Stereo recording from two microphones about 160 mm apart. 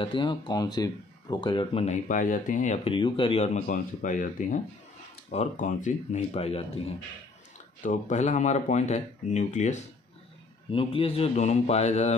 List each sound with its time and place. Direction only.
0.0 s speech: 30° left (ahead or behind)
1.9 s speech: 50° left (ahead or behind)
3.6 s speech: 55° left (ahead or behind)
10.7 s speech: 35° left (ahead or behind)